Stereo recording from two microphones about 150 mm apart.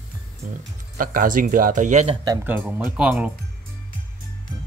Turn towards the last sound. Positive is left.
turn(degrees=-5)  # may be behind; listen again after turning